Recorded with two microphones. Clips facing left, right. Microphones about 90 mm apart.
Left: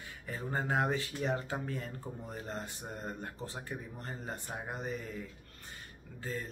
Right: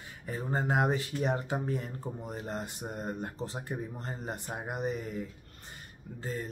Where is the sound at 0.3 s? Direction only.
20° right (ahead or behind).